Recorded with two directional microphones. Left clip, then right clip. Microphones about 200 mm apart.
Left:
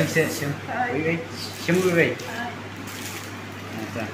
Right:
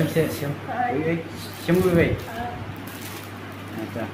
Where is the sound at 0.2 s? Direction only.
Centre (ahead or behind).